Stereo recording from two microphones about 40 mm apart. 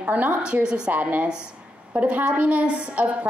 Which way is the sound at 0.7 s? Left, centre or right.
Right.